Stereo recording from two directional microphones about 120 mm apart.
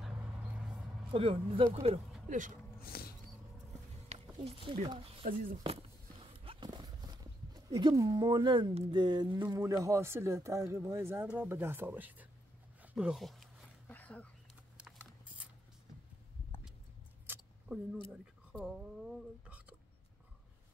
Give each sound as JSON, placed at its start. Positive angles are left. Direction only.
{"t": 1.1, "sound": "speech", "side_deg": -50}
{"t": 2.2, "sound": "speech", "side_deg": -90}
{"t": 4.4, "sound": "speech", "side_deg": -50}
{"t": 6.4, "sound": "horse", "side_deg": -45}
{"t": 8.9, "sound": "a sound", "side_deg": -40}
{"t": 9.6, "sound": "speech", "side_deg": -25}
{"t": 13.8, "sound": "a sound", "side_deg": 15}
{"t": 14.8, "sound": "patter", "side_deg": -10}
{"t": 17.3, "sound": "keys jangling", "side_deg": -15}
{"t": 18.6, "sound": "a sound", "side_deg": 0}